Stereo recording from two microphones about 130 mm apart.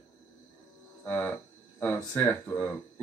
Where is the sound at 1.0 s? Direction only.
15° left (ahead or behind).